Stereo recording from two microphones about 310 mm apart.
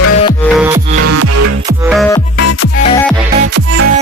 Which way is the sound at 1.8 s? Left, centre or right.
Centre.